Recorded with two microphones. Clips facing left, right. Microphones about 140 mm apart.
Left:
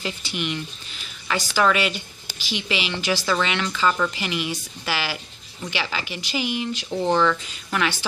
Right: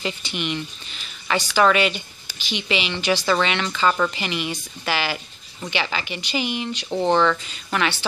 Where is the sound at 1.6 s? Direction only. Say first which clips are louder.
Right 3 dB; centre (ahead or behind).